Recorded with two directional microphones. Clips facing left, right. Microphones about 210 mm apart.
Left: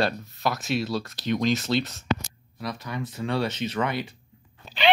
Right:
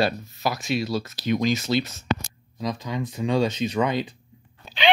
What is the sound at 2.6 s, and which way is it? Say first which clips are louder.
Speech: right 4 dB; 15° right (ahead or behind).